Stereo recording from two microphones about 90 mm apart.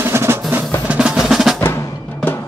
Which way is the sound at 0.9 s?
10° right (ahead or behind).